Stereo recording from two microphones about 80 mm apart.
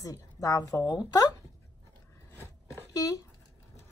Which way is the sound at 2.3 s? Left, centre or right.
Left.